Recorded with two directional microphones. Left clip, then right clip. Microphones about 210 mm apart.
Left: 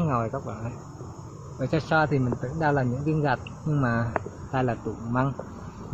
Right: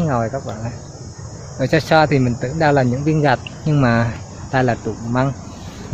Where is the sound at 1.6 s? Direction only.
30° right (ahead or behind).